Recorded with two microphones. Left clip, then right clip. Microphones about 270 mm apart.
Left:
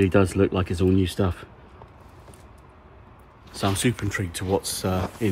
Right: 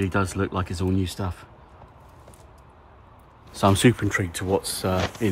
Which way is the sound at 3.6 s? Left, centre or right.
Right.